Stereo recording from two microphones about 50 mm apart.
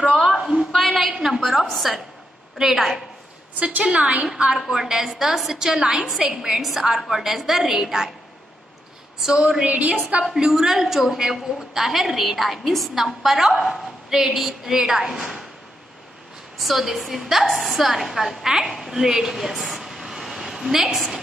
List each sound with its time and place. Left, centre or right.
0.7 s a sound: centre
1.2 s a woman's voice: centre
3.5 s a woman's voice: right
4.6 s a woman's voice: centre
9.2 s a woman's voice: centre; by 10.2 s right
10.4 s a woman's voice: centre
16.5 s a woman's voice: centre